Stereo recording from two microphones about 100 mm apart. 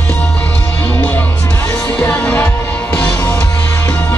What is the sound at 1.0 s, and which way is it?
Music, 15° left (ahead or behind).